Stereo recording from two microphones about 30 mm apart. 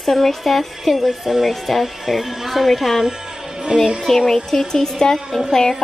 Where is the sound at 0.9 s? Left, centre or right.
Centre.